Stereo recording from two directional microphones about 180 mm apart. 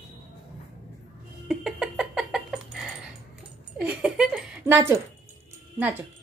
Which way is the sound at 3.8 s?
5° right (ahead or behind).